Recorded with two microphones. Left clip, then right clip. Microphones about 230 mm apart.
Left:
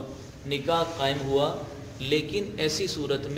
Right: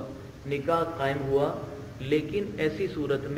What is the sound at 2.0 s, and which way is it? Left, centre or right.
Speech, left.